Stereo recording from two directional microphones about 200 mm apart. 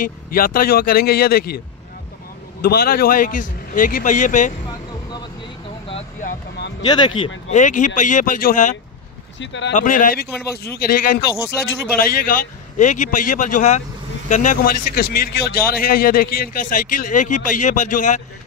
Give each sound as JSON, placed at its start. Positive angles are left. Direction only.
{"t": 0.0, "sound": "a man's voice", "side_deg": 45}
{"t": 2.6, "sound": "speech", "side_deg": 50}
{"t": 6.9, "sound": "speech", "side_deg": 25}
{"t": 7.5, "sound": "speech", "side_deg": 40}
{"t": 9.4, "sound": "speech", "side_deg": 65}
{"t": 9.8, "sound": "a man's voice", "side_deg": 40}